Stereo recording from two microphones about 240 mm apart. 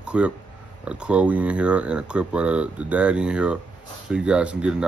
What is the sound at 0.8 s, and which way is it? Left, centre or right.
Speech, centre.